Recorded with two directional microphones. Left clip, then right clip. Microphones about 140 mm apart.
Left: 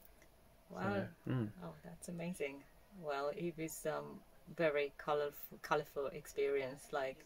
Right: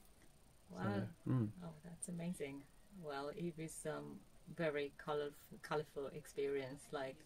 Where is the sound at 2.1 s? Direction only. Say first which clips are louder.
Left 5 dB; 5° right (ahead or behind).